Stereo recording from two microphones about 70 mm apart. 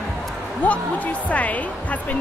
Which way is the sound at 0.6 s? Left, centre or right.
Left.